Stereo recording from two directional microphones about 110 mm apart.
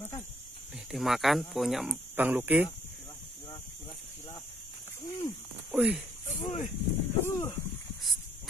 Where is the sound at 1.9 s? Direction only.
15° right (ahead or behind).